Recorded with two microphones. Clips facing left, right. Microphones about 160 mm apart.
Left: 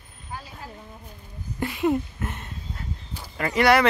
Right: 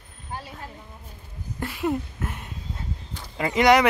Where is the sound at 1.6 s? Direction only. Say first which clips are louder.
Left 3 dB; centre (ahead or behind).